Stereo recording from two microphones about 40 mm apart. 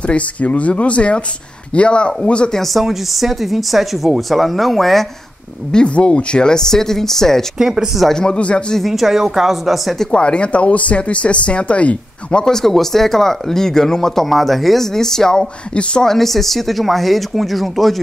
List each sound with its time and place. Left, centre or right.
0.0 s speech: left
2.5 s speech: centre
5.7 s speech: left
7.5 s speech: centre
8.1 s speech: centre
8.4 s speech: left
8.8 s speech: centre
10.1 s speech: left
12.4 s speech: centre